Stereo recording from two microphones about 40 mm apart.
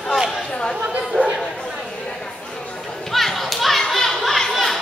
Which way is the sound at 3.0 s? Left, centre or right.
Centre.